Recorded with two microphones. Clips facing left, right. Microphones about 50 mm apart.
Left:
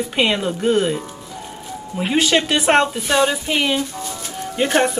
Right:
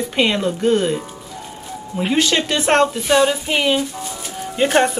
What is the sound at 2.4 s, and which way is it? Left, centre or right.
Speech, centre.